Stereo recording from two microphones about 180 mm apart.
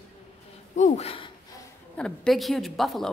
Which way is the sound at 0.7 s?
40° left (ahead or behind).